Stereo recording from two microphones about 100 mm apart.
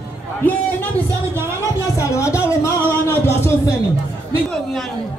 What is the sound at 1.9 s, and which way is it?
Speech, 30° left (ahead or behind).